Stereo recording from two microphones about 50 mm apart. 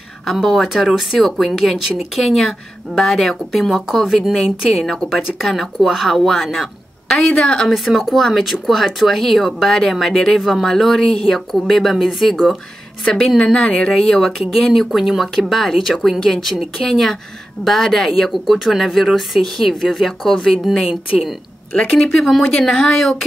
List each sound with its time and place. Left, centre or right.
0.2 s a woman's voice: centre
2.2 s speech: centre
7.1 s a woman's voice: centre
7.6 s a woman's voice: centre
14.4 s speech: centre
20.8 s a woman's voice: centre
21.7 s a woman's voice: centre
22.3 s speech: centre